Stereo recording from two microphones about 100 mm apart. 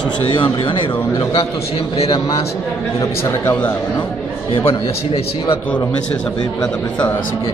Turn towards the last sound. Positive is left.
turn(degrees=65)  # may be behind; listen again after turning